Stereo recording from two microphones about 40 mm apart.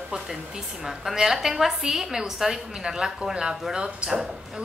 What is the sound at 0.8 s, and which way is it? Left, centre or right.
A woman's voice, centre.